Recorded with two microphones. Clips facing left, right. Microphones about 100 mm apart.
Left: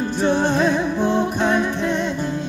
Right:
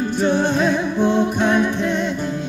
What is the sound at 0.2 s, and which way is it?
Music, 30° left (ahead or behind).